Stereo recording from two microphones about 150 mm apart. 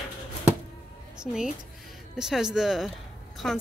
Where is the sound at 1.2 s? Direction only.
5° right (ahead or behind).